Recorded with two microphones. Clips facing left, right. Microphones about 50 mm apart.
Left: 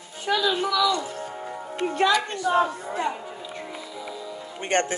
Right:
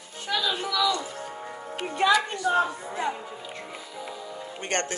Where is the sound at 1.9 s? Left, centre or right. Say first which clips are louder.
Even; centre.